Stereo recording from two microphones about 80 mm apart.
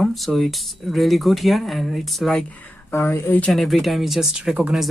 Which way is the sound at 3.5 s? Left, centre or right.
Centre.